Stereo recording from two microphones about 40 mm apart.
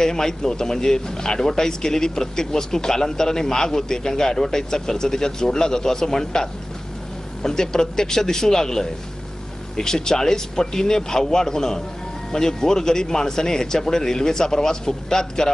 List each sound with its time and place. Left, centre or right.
0.0 s a man's voice: centre